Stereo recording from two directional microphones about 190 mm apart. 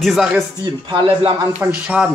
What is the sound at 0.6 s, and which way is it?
Speech, 25° right (ahead or behind).